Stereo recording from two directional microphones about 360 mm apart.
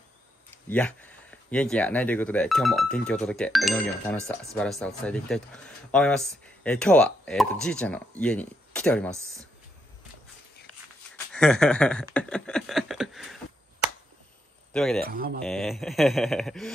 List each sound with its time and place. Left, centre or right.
0.7 s speech: centre
9.1 s speech: centre
11.3 s speech: centre
14.7 s speech: centre
15.0 s speech: right
15.4 s speech: centre